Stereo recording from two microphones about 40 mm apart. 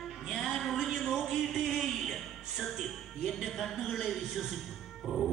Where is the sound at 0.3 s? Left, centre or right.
Centre.